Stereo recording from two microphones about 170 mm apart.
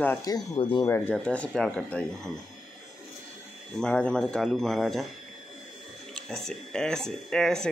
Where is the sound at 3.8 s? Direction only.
5° left (ahead or behind).